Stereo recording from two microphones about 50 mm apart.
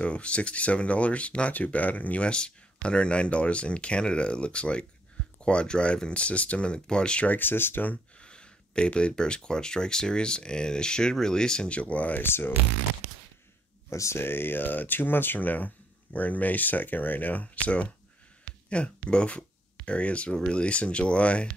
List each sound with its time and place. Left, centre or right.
0.0 s speech: left
7.2 s speech: left
7.9 s speech: left
11.7 s speech: left
12.2 s speech: left
13.8 s speech: left
14.2 s speech: left